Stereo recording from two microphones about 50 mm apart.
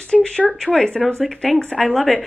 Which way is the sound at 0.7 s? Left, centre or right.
Centre.